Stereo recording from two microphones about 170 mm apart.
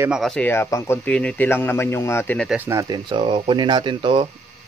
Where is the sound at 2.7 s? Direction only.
20° right (ahead or behind).